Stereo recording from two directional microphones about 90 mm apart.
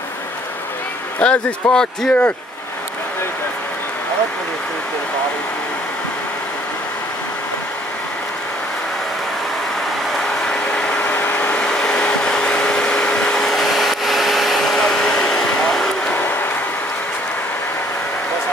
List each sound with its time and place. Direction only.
1.2 s speech: 10° left (ahead or behind)
10.4 s vehicle: 10° left (ahead or behind)
11.1 s a sound: 20° left (ahead or behind)